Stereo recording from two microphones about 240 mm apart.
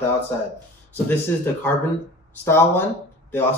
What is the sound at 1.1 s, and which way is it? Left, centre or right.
Speech, centre.